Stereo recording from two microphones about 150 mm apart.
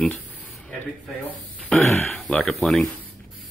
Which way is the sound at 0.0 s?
Centre (ahead or behind).